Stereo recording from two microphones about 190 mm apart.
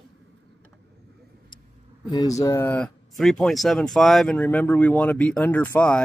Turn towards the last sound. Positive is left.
turn(degrees=5)  # may be behind; listen again after turning